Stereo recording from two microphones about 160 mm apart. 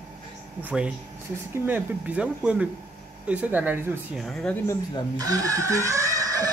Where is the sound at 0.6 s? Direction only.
10° right (ahead or behind).